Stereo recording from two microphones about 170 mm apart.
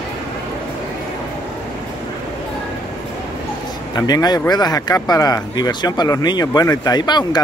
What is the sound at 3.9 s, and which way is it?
Speech, 25° left (ahead or behind).